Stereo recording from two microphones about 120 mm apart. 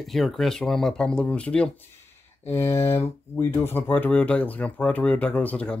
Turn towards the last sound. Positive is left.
turn(degrees=10)  # may be behind; listen again after turning